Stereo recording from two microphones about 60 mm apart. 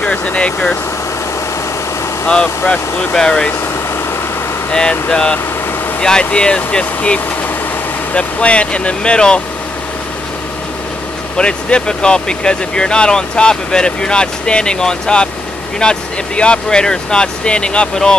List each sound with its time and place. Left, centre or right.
0.0 s speech: left
2.2 s speech: left
4.6 s speech: centre
11.3 s speech: centre